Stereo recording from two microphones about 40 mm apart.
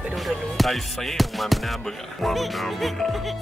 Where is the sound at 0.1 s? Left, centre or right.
Centre.